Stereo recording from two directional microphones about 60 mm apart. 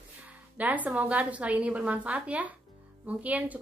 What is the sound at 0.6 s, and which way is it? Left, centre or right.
A woman's voice, right.